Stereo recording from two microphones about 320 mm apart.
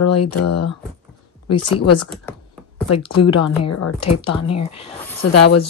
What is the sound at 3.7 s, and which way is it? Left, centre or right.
A woman's voice, left.